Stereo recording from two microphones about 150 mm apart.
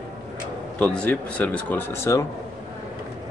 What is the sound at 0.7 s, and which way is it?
Speech, 10° left (ahead or behind).